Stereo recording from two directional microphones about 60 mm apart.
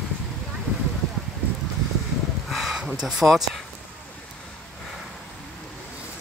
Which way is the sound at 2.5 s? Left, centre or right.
Centre.